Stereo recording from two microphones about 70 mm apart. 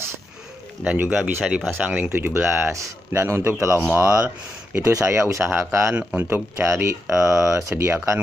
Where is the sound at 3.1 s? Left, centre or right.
Right.